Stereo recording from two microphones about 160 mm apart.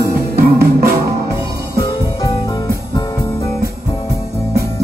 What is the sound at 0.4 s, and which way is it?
Music, 80° right.